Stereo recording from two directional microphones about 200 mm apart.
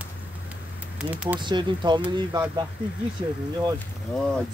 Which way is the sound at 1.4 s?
20° right (ahead or behind).